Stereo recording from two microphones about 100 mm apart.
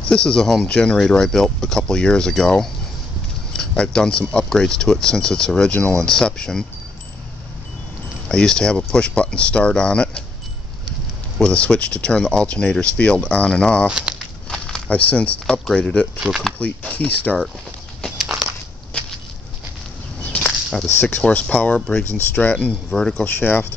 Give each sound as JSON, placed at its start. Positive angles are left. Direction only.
{"t": 0.1, "sound": "speech", "side_deg": 5}
{"t": 8.3, "sound": "speech", "side_deg": 5}
{"t": 11.3, "sound": "speech", "side_deg": 10}
{"t": 13.8, "sound": "speech", "side_deg": -10}
{"t": 14.5, "sound": "speech", "side_deg": 10}
{"t": 16.2, "sound": "speech", "side_deg": -5}
{"t": 16.5, "sound": "speech", "side_deg": 15}
{"t": 18.0, "sound": "a sound", "side_deg": 0}
{"t": 18.9, "sound": "a sound", "side_deg": 10}
{"t": 20.2, "sound": "a sound", "side_deg": 15}
{"t": 21.3, "sound": "speech", "side_deg": 15}
{"t": 22.1, "sound": "speech", "side_deg": 20}
{"t": 23.2, "sound": "speech", "side_deg": 20}